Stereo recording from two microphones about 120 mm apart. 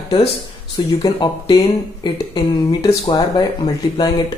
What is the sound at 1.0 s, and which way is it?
Speech, 35° left (ahead or behind).